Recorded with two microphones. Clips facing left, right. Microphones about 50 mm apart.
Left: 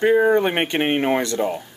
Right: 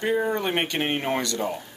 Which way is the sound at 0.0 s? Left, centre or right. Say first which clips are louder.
Left 8 dB; left.